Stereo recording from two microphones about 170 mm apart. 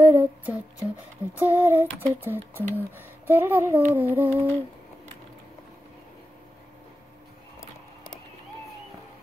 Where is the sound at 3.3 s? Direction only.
10° right (ahead or behind).